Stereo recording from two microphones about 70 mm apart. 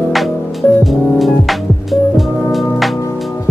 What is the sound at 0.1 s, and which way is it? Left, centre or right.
Music, centre.